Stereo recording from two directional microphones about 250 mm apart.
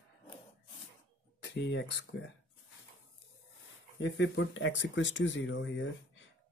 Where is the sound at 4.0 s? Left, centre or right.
Left.